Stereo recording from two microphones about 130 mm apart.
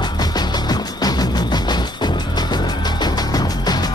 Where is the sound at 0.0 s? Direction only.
30° left (ahead or behind).